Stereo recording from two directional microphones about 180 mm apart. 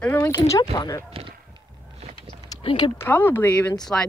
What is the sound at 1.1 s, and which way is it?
Run, 30° right (ahead or behind).